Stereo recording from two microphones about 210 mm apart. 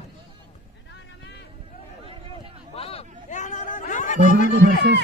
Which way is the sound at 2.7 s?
30° left (ahead or behind).